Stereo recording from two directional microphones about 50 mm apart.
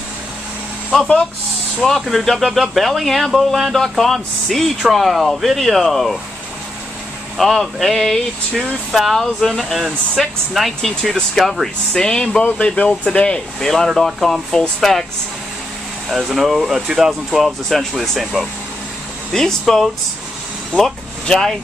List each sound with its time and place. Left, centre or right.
0.9 s speech: centre
1.8 s speech: centre
7.3 s speech: centre; by 13.4 s left
13.6 s speech: centre
16.1 s speech: centre
19.3 s speech: centre